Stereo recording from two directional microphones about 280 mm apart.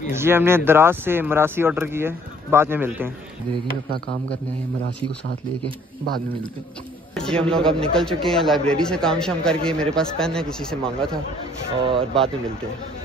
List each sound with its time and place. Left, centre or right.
0.1 s speech: centre
7.2 s chatter: centre
7.5 s a man's voice: centre
11.8 s speech: centre